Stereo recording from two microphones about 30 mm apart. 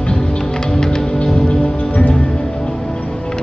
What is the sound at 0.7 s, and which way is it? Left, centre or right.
Music, left.